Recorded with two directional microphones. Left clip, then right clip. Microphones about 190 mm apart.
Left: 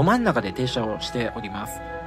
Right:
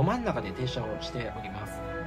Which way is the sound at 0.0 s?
30° left (ahead or behind).